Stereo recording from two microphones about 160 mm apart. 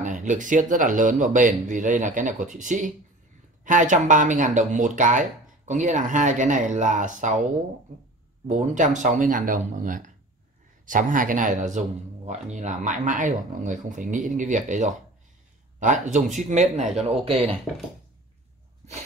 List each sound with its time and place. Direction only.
0.0 s speech: 50° right (ahead or behind)
8.5 s speech: 50° right (ahead or behind)
17.2 s speech: 35° right (ahead or behind)